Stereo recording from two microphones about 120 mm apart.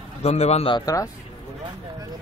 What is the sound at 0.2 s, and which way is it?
Speech, 60° left (ahead or behind).